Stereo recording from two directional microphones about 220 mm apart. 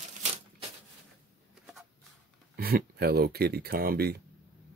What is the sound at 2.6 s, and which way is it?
Speech, 45° right (ahead or behind).